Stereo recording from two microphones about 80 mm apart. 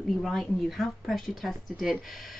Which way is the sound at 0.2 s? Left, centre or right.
Centre.